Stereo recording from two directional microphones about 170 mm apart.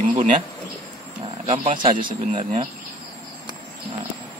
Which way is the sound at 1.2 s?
35° right (ahead or behind).